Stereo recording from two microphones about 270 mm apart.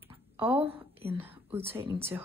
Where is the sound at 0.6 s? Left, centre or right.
Right.